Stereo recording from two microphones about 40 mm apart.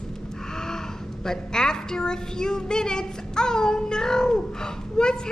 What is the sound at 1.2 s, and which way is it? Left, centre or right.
A woman's voice, centre.